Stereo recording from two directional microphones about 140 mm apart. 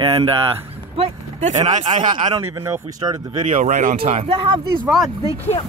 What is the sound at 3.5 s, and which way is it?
Speech, 60° right (ahead or behind).